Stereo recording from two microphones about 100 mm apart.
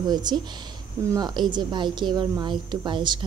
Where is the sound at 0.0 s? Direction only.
45° right (ahead or behind).